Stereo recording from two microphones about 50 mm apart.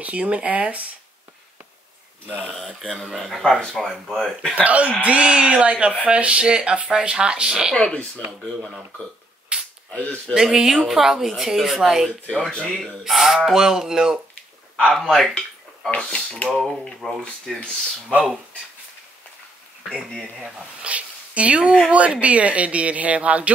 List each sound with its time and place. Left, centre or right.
0.0 s speech: right
2.2 s speech: right
2.5 s speech: centre
4.1 s speech: centre
4.6 s speech: right
7.7 s speech: left
9.5 s a sound: right
9.9 s speech: left
10.5 s speech: centre
12.4 s speech: centre
13.0 s speech: centre
15.0 s speech: centre
17.0 s speech: centre
20.8 s speech: right